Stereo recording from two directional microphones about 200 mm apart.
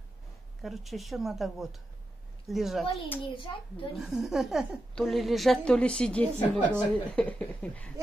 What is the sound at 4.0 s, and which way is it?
A woman's voice, centre (ahead or behind).